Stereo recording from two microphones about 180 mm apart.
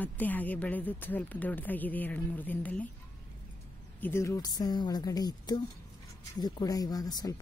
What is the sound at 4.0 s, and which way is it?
Speech, 15° left (ahead or behind).